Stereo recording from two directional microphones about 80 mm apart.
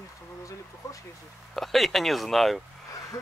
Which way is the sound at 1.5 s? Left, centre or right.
Centre.